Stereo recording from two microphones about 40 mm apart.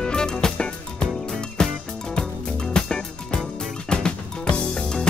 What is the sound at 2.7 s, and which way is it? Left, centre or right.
Music, centre.